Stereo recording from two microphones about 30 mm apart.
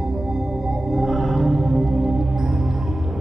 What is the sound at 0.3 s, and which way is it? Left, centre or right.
Music, centre.